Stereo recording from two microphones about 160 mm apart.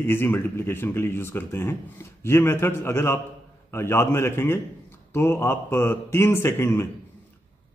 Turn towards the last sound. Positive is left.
turn(degrees=15)  # may be behind; listen again after turning